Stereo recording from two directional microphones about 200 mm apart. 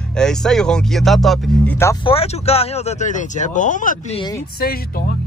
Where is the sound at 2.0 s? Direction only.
30° left (ahead or behind).